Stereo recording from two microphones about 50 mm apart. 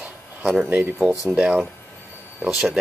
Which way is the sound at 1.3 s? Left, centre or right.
Centre.